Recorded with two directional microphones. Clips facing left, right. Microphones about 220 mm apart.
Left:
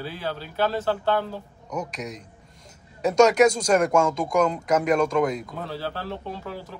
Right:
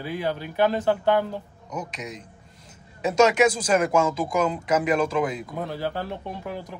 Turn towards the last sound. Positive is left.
turn(degrees=-15)  # may be behind; listen again after turning